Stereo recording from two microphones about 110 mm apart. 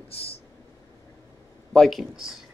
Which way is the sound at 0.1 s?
60° left (ahead or behind).